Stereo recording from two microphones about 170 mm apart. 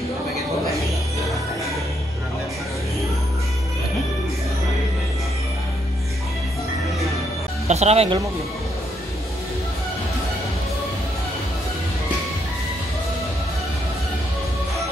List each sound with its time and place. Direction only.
7.6 s speech: 40° right (ahead or behind)